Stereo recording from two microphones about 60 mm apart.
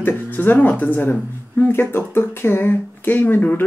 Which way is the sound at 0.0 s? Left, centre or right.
Left.